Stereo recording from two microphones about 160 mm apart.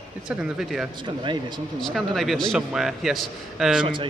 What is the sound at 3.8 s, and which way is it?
Speech, 30° right (ahead or behind).